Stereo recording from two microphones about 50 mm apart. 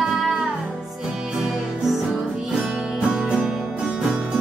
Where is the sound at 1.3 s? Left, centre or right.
Centre.